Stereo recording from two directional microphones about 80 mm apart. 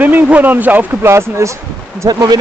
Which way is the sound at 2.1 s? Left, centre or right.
Right.